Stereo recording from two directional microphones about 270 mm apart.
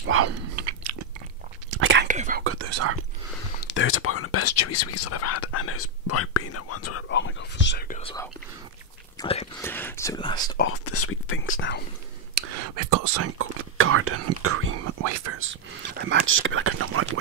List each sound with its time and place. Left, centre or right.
0.0 s chewing: right
0.6 s biting: right
1.7 s whispering: right
2.0 s whispering: right
2.4 s whispering: right
3.6 s speech: left
7.1 s whispering: left
8.0 s whispering: centre
9.2 s a sound: centre
9.7 s whispering: centre
10.6 s speech: left
12.5 s whispering: right
13.2 s speech: right
15.3 s speech: right